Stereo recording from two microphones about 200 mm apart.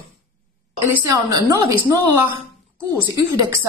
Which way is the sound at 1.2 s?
20° right (ahead or behind).